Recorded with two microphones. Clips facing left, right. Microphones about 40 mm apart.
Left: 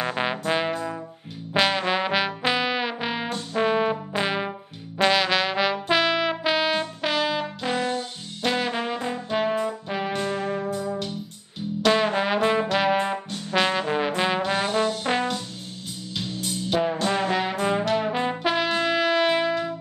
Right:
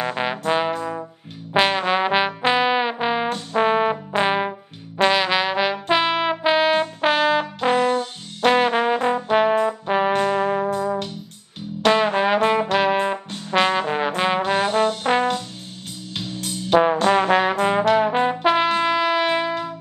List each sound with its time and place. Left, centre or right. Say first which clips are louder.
0.0 s trombone: right 2 dB; centre; by 4.5 s right
5.0 s trombone: right 2 dB; centre; by 10.7 s right
10.7 s brass instrument: right 5 dB; right
11.9 s music: right 4 dB; centre
13.5 s trombone: right 4 dB; centre
16.4 s trombone: right 8 dB; right
18.0 s brass instrument: right 6 dB; right
18.3 s trumpet: right 5 dB; centre
18.9 s music: right 1 dB; centre